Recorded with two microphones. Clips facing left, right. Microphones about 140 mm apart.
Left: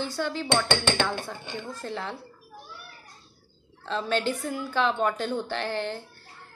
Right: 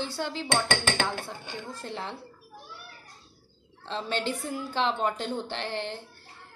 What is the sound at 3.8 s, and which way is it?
A woman's voice, 25° right (ahead or behind).